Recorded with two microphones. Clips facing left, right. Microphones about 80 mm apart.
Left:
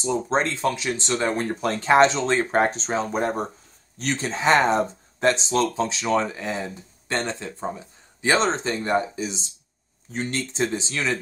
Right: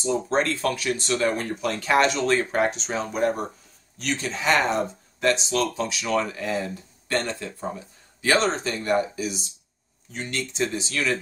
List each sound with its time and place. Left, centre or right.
0.0 s speech: left